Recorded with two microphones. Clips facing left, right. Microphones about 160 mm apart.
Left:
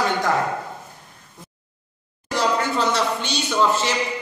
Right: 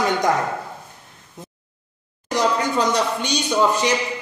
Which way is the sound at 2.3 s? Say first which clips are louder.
Right 2 dB; 15° right (ahead or behind).